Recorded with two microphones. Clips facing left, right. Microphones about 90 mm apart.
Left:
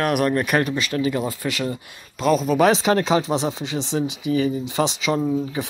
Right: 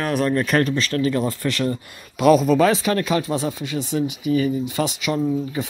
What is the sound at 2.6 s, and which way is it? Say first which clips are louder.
Speech: left 1 dB; 25° left (ahead or behind).